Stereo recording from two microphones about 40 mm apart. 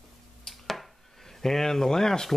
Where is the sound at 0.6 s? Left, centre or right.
Centre.